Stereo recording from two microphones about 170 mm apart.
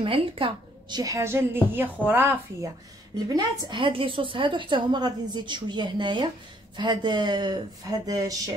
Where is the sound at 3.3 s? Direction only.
25° right (ahead or behind).